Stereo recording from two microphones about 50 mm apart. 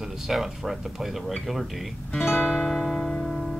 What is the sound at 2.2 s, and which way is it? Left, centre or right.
Music, left.